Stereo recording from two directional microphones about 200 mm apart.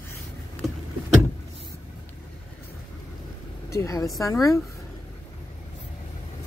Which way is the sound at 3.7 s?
15° left (ahead or behind).